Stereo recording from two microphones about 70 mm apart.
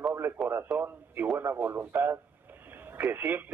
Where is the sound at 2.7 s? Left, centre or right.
Right.